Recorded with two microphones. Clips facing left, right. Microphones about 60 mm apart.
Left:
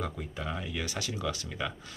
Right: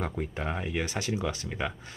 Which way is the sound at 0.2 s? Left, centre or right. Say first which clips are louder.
Right 4 dB; right.